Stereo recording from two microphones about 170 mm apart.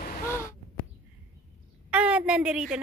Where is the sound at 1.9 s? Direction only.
5° right (ahead or behind).